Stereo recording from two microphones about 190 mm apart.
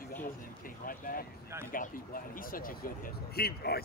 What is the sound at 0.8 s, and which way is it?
Speech, 50° left (ahead or behind).